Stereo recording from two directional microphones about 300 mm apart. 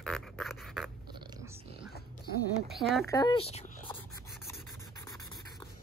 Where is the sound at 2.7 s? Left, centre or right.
Centre.